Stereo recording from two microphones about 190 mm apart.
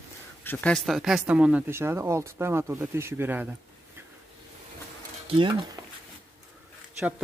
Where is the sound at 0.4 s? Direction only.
10° left (ahead or behind); by 3.5 s 10° right (ahead or behind).